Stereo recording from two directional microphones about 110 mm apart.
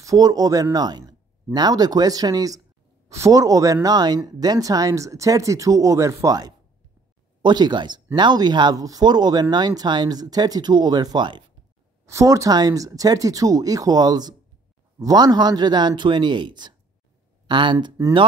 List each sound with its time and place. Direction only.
0.0 s speech: 30° right (ahead or behind)
12.1 s speech: 30° right (ahead or behind); by 17.9 s 45° right (ahead or behind)